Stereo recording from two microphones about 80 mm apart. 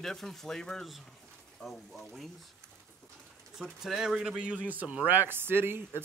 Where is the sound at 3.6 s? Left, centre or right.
Centre.